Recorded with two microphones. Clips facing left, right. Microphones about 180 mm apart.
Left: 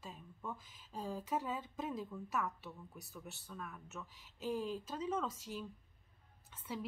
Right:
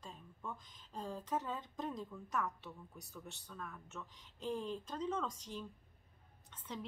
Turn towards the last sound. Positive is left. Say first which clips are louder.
# left 3 dB
turn(degrees=5)  # may be behind; listen again after turning